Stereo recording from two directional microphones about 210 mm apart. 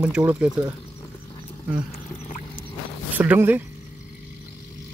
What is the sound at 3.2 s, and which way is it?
Speech, 10° right (ahead or behind).